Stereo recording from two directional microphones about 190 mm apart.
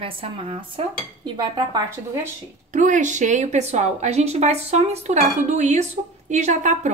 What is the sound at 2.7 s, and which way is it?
Speech, 40° right (ahead or behind).